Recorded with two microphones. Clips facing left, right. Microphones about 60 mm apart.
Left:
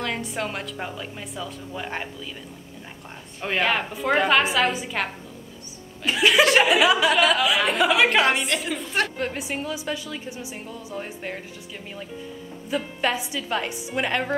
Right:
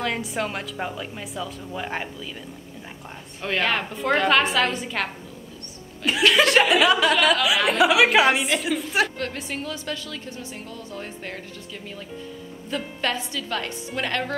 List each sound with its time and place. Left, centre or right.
0.0 s speech: centre
3.4 s speech: centre
9.2 s a woman's voice: centre
12.6 s a woman's voice: centre